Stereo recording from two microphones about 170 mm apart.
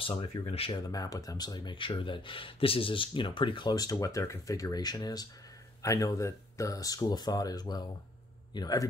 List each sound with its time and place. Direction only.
0.0 s speech: 30° left (ahead or behind)